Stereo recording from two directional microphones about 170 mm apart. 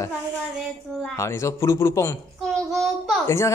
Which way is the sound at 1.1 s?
15° left (ahead or behind).